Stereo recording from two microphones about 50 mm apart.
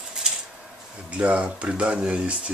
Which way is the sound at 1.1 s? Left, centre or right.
Right.